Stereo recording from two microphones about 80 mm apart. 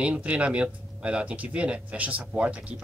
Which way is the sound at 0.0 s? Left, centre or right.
Centre.